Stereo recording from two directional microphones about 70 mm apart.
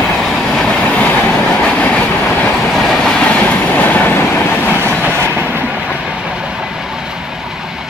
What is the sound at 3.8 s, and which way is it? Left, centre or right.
Train, left.